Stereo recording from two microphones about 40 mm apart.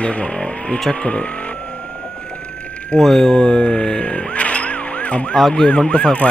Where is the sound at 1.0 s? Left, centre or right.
Left.